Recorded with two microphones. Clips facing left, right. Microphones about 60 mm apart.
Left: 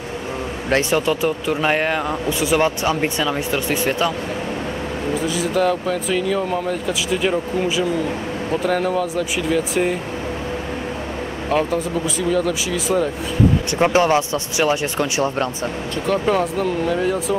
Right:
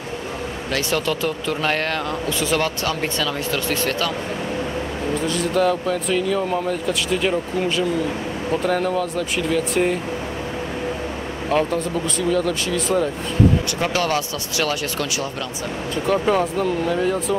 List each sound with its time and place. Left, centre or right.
0.7 s speech: left
0.9 s speech: centre
5.1 s speech: centre
11.4 s speech: centre
13.7 s speech: left
16.1 s speech: centre